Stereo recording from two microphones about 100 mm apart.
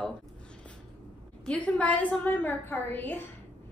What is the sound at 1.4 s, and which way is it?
A woman's voice, 10° left (ahead or behind).